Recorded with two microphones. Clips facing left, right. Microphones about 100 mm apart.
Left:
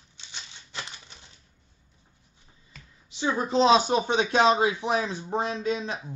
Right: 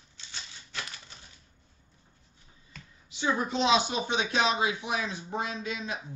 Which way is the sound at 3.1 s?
30° left (ahead or behind).